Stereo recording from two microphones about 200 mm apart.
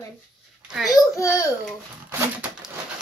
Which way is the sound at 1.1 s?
15° left (ahead or behind).